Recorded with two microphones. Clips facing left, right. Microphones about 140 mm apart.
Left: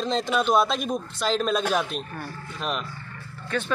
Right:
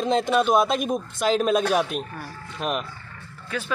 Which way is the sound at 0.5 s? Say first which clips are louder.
Right 2 dB; 50° right (ahead or behind).